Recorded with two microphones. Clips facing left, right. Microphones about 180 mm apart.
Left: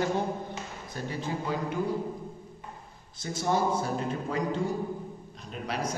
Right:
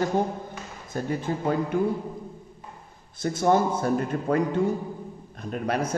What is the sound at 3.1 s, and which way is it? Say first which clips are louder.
A man's voice: right 6 dB; 55° right (ahead or behind).